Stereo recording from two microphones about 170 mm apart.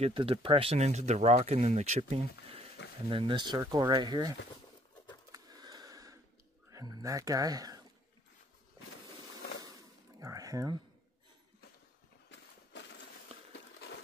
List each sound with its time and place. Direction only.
0.0 s speech: 35° right (ahead or behind)
5.3 s sniff: 25° right (ahead or behind)
6.7 s speech: 20° right (ahead or behind)
9.6 s a sound: 20° right (ahead or behind)